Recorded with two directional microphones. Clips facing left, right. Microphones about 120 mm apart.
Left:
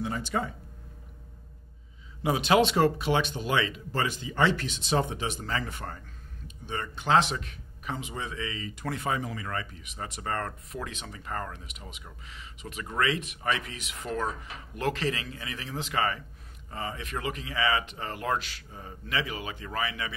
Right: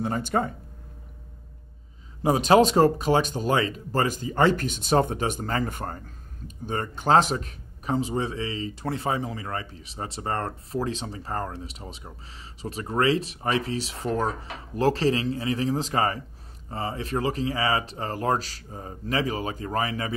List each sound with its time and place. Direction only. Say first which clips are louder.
0.0 s speech: right 5 dB; 45° right (ahead or behind)
2.2 s speech: right 5 dB; 40° right (ahead or behind)